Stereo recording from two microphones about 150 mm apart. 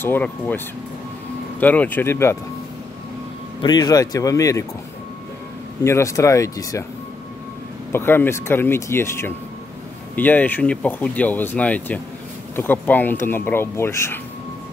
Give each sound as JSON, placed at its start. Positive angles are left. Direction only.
{"t": 0.0, "sound": "speech", "side_deg": 10}
{"t": 1.6, "sound": "speech", "side_deg": 10}
{"t": 3.6, "sound": "speech", "side_deg": 25}
{"t": 5.9, "sound": "speech", "side_deg": 20}
{"t": 7.9, "sound": "speech", "side_deg": 15}